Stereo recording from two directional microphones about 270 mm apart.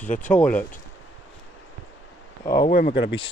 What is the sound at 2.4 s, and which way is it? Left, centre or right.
Speech, centre.